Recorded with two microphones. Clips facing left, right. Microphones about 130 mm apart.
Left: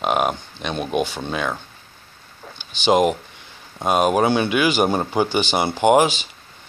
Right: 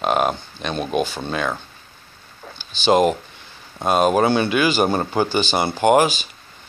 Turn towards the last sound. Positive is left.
turn(degrees=20)  # may be behind; listen again after turning